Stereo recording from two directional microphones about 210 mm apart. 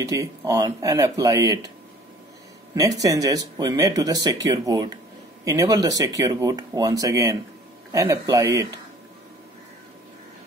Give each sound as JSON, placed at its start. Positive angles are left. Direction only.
{"t": 0.0, "sound": "speech", "side_deg": -15}
{"t": 3.0, "sound": "speech", "side_deg": -15}